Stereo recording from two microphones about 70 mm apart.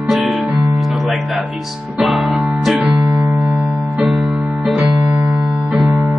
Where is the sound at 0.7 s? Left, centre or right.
Centre.